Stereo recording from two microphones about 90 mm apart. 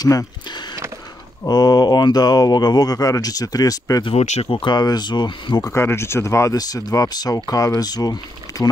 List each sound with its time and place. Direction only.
0.0 s a sound: 45° left (ahead or behind)
1.5 s speech: 50° left (ahead or behind)
4.0 s speech: 90° left; by 5.6 s 55° left (ahead or behind)
5.6 s speech: 30° left (ahead or behind)